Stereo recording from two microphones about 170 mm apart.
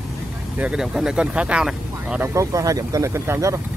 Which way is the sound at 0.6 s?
5° right (ahead or behind).